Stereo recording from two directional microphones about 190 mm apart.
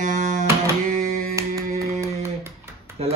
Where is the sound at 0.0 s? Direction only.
40° right (ahead or behind).